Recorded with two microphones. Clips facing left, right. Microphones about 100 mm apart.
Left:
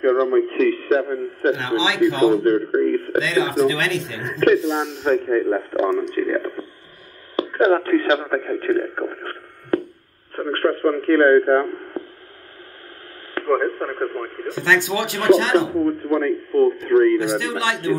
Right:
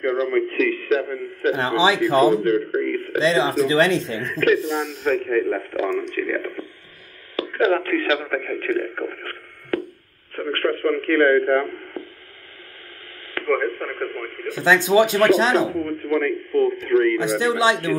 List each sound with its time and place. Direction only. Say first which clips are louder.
0.0 s a man's voice: left 4 dB; 35° left (ahead or behind)
1.5 s speech: right 3 dB; 40° right (ahead or behind)
2.4 s a man's voice: left 3 dB; 35° left (ahead or behind)
3.2 s speech: right 2 dB; 30° right (ahead or behind)
4.3 s a man's voice: left 3 dB; 30° left (ahead or behind)
8.9 s radio: left 2 dB; 25° left (ahead or behind)
10.3 s speech: left 2 dB; 30° left (ahead or behind)
13.3 s speech: left 2 dB; 30° left (ahead or behind)
14.6 s speech: right 4 dB; 20° right (ahead or behind)
15.8 s speech: left 3 dB; 30° left (ahead or behind)
17.4 s speech: right 5 dB; 20° right (ahead or behind)